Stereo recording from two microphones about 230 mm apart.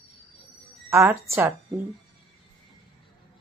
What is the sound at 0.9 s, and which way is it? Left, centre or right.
Speech, centre.